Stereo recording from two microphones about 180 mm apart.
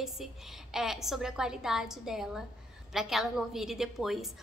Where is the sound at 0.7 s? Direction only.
Centre (ahead or behind).